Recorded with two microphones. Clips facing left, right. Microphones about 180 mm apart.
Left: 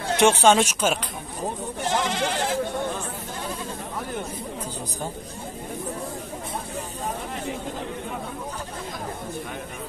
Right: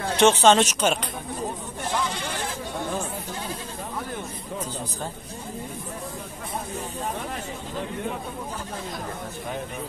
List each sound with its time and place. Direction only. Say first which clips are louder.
0.2 s speech: right 1 dB; 10° left (ahead or behind)
1.9 s sheep: left 4 dB; 90° left; by 2.6 s 75° left (ahead or behind)